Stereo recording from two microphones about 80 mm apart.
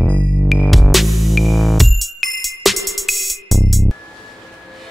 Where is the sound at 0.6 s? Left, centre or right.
Centre.